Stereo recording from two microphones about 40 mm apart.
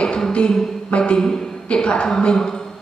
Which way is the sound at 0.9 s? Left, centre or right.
Left.